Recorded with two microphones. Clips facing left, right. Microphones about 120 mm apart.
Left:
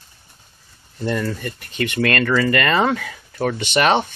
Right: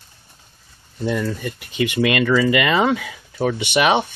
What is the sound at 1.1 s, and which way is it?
Speech, 5° right (ahead or behind).